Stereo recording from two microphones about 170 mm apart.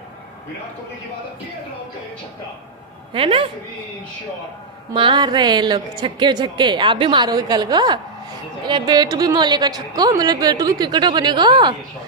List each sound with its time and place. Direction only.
3.1 s a woman's voice: 35° right (ahead or behind)
4.9 s a woman's voice: 30° right (ahead or behind)